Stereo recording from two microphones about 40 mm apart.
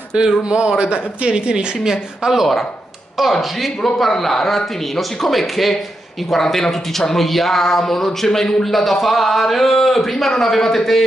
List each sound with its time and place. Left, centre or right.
0.4 s speech: right
1.8 s a woman's voice: centre
3.2 s speech: centre